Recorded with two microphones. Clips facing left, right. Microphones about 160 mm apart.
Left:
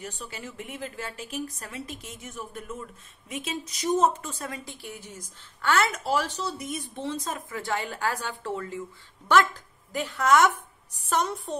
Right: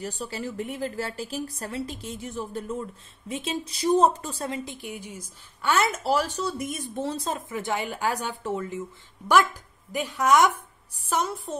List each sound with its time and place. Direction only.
0.0 s a woman's voice: 35° right (ahead or behind); by 5.9 s 15° right (ahead or behind)
5.9 s speech: 40° right (ahead or behind)
7.0 s a woman's voice: 35° right (ahead or behind); by 11.5 s centre (ahead or behind)